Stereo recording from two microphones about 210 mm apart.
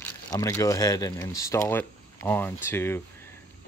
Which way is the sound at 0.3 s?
15° left (ahead or behind).